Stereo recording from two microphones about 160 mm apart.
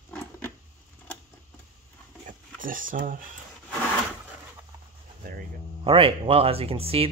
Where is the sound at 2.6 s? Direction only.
60° right (ahead or behind).